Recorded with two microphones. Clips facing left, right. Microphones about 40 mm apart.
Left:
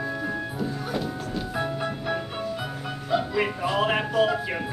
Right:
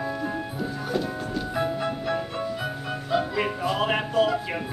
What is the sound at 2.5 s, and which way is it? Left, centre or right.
Music, centre.